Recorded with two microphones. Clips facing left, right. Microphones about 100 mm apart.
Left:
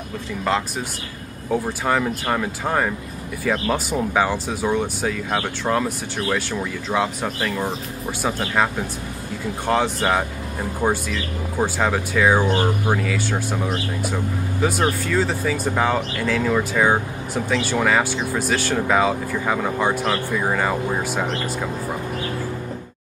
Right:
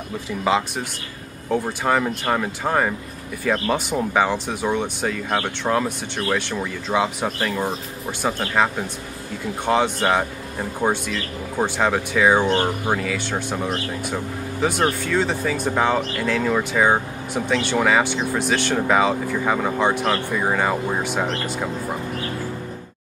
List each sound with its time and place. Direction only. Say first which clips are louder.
0.4 s speech: right 2 dB; 5° right (ahead or behind)